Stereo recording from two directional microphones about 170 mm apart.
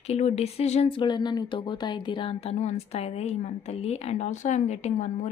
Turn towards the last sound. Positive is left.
turn(degrees=40)  # may be behind; listen again after turning